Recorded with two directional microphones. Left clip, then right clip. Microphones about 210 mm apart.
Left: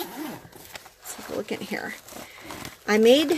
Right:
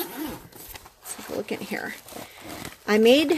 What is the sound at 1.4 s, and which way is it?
Speech, 5° right (ahead or behind).